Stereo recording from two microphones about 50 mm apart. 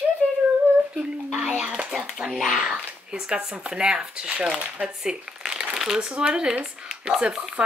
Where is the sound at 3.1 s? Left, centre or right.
Centre.